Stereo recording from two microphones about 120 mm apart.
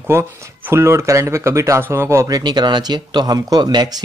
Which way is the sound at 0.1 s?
20° right (ahead or behind).